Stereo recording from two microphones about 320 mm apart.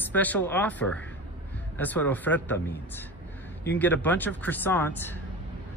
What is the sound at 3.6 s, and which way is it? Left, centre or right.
Speech, centre.